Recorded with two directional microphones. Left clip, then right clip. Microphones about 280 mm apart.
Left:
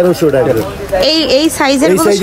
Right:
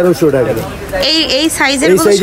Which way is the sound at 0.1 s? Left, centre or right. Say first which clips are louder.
Even; centre.